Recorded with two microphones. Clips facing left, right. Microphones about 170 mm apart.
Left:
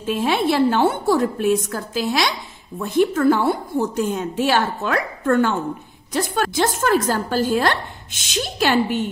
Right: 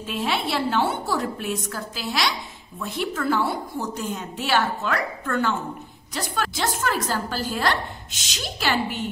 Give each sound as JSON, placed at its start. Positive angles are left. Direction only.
{"t": 0.0, "sound": "a woman's voice", "side_deg": 45}